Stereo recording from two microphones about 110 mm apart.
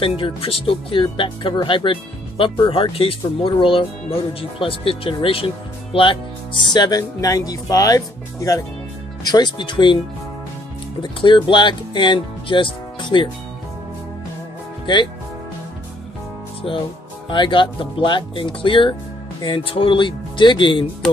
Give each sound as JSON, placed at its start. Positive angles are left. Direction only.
{"t": 0.0, "sound": "speech", "side_deg": 55}
{"t": 11.0, "sound": "speech", "side_deg": 45}
{"t": 16.7, "sound": "speech", "side_deg": 50}